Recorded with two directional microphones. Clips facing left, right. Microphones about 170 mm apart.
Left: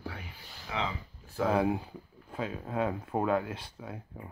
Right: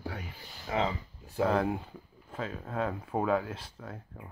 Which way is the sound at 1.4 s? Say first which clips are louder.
Left 1 dB; 5° left (ahead or behind).